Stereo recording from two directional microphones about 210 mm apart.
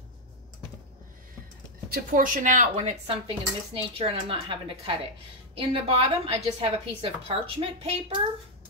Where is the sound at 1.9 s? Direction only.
40° right (ahead or behind); by 7.9 s 25° right (ahead or behind).